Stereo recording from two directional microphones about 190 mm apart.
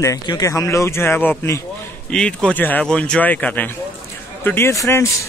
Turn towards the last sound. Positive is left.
turn(degrees=15)  # may be behind; listen again after turning